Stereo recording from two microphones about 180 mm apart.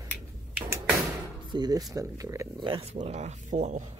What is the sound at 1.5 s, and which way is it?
Speech, 20° right (ahead or behind).